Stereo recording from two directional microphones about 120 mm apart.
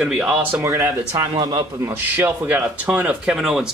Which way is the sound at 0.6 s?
25° right (ahead or behind).